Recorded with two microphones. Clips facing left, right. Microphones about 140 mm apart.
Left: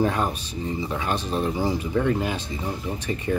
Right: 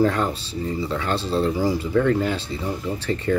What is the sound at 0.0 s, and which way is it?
Speech, 15° left (ahead or behind).